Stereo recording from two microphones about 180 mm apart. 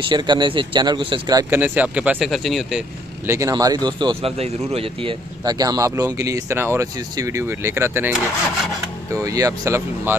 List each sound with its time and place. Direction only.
0.0 s speech: 25° right (ahead or behind)
1.5 s speech: 10° right (ahead or behind)
3.3 s speech: 15° right (ahead or behind)
9.1 s speech: 20° right (ahead or behind)